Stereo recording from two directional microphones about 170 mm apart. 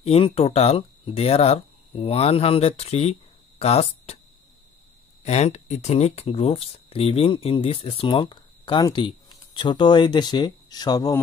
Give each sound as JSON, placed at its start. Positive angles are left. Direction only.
{"t": 0.0, "sound": "speech", "side_deg": 35}
{"t": 5.2, "sound": "speech", "side_deg": 40}